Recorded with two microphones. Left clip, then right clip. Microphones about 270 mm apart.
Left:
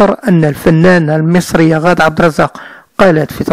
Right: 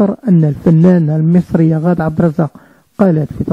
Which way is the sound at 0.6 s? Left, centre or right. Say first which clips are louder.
Left 4 dB; left.